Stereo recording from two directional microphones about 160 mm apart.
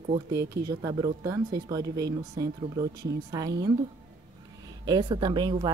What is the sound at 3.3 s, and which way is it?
Speech, 25° right (ahead or behind).